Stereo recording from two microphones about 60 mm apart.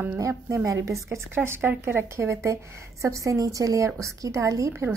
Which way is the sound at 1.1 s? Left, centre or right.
Right.